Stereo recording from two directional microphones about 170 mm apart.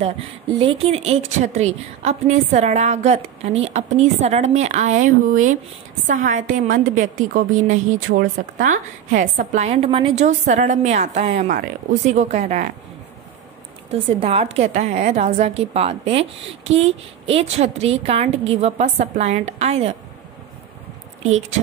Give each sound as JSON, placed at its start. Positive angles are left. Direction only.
{"t": 0.6, "sound": "a woman's voice", "side_deg": -35}
{"t": 13.9, "sound": "a woman's voice", "side_deg": -35}
{"t": 21.2, "sound": "a woman's voice", "side_deg": -40}